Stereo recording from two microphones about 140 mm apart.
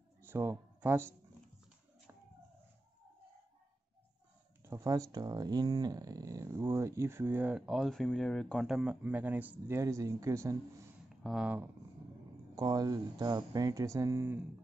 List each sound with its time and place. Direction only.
0.2 s a sound: 15° right (ahead or behind)
4.6 s speech: 25° right (ahead or behind)
11.2 s speech: 5° right (ahead or behind)
12.5 s speech: 25° right (ahead or behind)